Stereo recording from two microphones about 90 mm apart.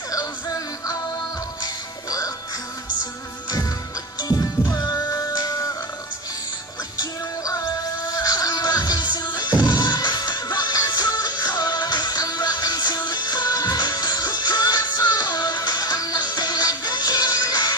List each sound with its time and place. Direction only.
0.1 s music: 40° left (ahead or behind)
4.7 s music: 45° left (ahead or behind)
7.0 s music: 40° left (ahead or behind)